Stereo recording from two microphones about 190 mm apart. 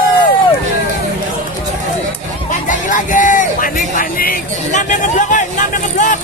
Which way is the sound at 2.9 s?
45° left (ahead or behind).